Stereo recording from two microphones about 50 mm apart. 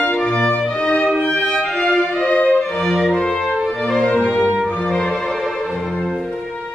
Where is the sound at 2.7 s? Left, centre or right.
Centre.